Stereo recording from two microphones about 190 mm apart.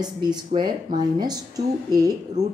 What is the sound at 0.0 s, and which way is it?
A woman's voice, 20° right (ahead or behind).